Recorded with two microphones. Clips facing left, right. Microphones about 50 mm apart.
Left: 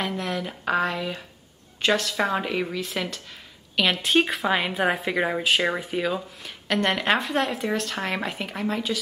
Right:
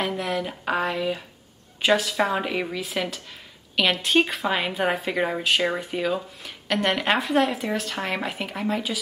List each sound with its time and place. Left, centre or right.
0.0 s speech: centre